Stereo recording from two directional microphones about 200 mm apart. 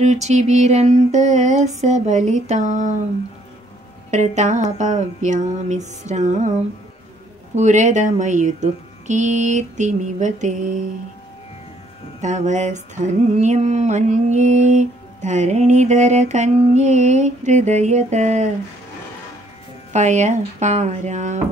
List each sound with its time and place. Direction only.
0.0 s mantra: 35° right (ahead or behind)
4.4 s mantra: 35° right (ahead or behind)
7.5 s mantra: 35° right (ahead or behind)
12.2 s mantra: 35° right (ahead or behind)
19.9 s mantra: 35° right (ahead or behind)